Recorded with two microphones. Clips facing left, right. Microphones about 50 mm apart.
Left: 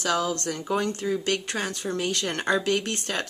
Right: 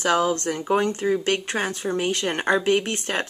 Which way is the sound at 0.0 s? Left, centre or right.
Right.